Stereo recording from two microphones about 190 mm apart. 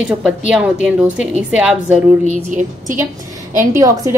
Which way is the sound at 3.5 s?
15° right (ahead or behind).